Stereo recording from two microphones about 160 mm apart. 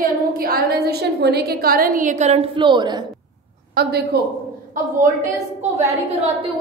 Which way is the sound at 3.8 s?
90° right.